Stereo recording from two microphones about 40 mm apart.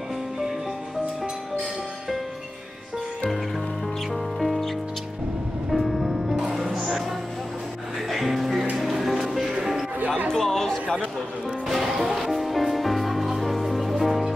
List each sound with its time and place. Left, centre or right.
4.1 s music: centre
9.9 s music: right
10.3 s chatter: centre
11.6 s music: centre